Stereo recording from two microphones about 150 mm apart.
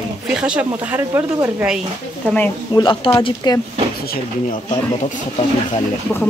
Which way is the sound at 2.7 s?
30° left (ahead or behind).